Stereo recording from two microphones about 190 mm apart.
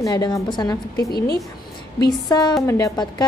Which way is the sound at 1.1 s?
55° left (ahead or behind).